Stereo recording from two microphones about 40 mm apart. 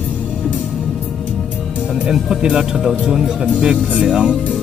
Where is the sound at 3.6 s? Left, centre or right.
Right.